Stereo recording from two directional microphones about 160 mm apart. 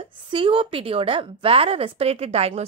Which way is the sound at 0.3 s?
35° right (ahead or behind).